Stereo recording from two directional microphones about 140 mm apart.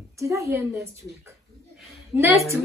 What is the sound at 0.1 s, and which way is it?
Speech, 20° right (ahead or behind).